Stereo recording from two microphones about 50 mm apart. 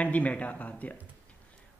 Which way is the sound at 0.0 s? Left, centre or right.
Left.